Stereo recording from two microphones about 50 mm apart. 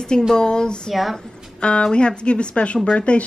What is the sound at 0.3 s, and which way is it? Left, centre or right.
A woman's voice, centre.